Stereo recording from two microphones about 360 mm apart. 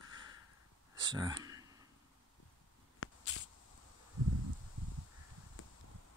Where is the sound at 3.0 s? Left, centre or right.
Left.